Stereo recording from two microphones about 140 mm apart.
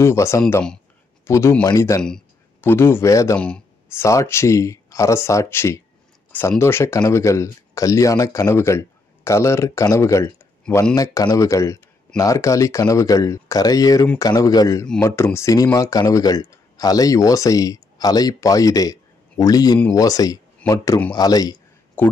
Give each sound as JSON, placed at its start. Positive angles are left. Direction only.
{"t": 0.0, "sound": "speech", "side_deg": 20}
{"t": 3.3, "sound": "a sound", "side_deg": 10}
{"t": 4.0, "sound": "speech", "side_deg": 20}
{"t": 22.0, "sound": "speech", "side_deg": 15}